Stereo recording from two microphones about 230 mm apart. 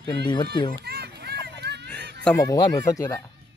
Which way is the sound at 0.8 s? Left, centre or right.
Right.